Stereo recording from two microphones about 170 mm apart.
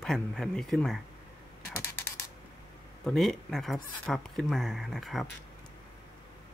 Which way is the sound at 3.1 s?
Centre (ahead or behind).